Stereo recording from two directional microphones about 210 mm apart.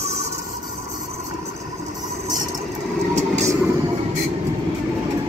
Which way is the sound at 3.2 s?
30° right (ahead or behind).